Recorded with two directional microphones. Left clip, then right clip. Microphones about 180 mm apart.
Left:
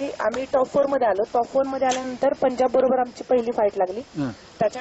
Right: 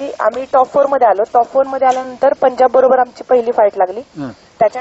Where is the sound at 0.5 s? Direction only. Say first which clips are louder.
Right 9 dB; 15° left (ahead or behind).